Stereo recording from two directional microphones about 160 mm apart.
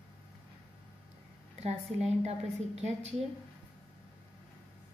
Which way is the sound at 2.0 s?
45° right (ahead or behind).